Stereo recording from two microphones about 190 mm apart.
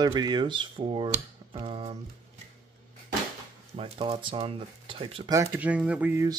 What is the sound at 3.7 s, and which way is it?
Speech, 30° right (ahead or behind).